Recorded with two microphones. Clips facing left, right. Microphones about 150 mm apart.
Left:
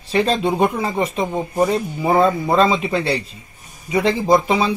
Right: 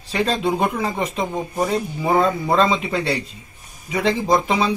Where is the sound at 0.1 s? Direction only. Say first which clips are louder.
Left 3 dB; 10° left (ahead or behind).